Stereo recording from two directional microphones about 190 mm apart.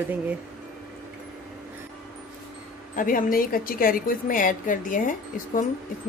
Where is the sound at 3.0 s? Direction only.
45° left (ahead or behind).